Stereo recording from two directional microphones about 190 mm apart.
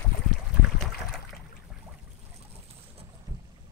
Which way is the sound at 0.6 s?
Centre (ahead or behind).